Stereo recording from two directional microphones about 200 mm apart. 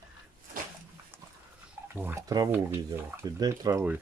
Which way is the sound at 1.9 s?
10° right (ahead or behind).